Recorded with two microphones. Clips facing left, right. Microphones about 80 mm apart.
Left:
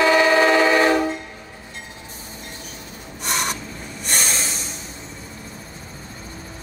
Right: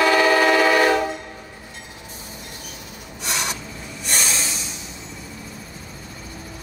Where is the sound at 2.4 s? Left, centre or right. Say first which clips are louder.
Left 1 dB; left.